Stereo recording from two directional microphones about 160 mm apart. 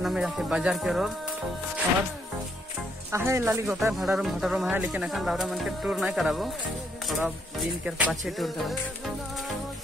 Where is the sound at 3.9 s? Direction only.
Centre (ahead or behind).